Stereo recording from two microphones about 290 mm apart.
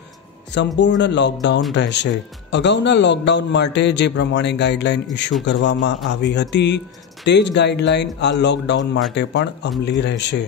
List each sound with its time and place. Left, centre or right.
0.7 s a man's voice: left